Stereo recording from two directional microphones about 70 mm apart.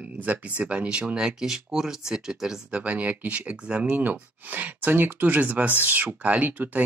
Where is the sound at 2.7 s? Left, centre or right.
Centre.